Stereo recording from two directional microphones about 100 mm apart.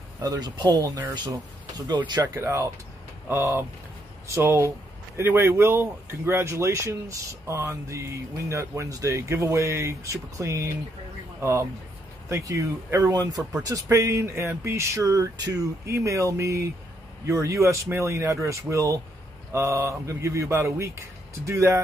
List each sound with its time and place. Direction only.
0.2 s speech: 40° right (ahead or behind)
2.3 s speech: 30° right (ahead or behind)
4.3 s speech: 25° right (ahead or behind)
12.3 s speech: 35° right (ahead or behind)